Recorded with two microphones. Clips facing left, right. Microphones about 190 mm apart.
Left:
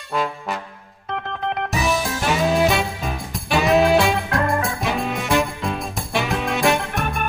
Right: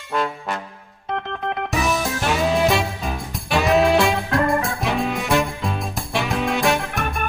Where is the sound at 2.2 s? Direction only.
Centre (ahead or behind).